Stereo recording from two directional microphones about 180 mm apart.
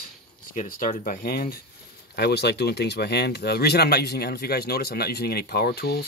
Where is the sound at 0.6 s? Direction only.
45° left (ahead or behind).